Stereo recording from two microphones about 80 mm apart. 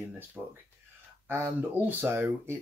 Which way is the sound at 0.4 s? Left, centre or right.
Centre.